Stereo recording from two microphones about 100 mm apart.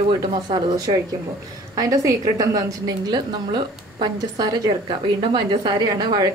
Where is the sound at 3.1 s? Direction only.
50° right (ahead or behind).